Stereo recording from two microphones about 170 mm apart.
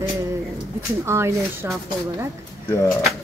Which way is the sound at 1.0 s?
15° right (ahead or behind).